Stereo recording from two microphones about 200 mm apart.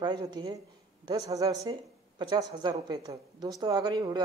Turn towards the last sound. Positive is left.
turn(degrees=-20)  # may be behind; listen again after turning